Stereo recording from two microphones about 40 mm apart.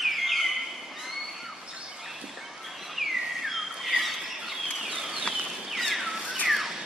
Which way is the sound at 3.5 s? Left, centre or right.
Centre.